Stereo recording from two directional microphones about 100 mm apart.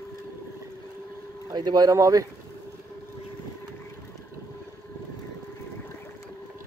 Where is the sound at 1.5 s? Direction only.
45° right (ahead or behind).